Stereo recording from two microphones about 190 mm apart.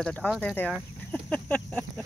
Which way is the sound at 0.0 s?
5° left (ahead or behind).